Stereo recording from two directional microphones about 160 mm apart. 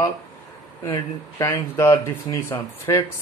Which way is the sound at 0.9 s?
20° left (ahead or behind).